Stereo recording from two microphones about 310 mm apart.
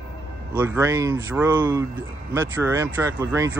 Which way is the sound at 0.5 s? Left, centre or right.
Centre.